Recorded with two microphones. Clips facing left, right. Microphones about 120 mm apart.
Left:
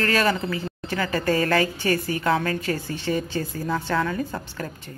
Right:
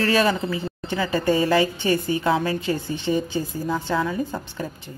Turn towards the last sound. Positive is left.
turn(degrees=-15)  # may be behind; listen again after turning